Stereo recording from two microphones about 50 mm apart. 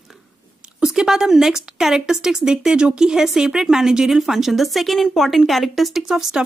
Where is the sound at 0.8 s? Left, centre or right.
Centre.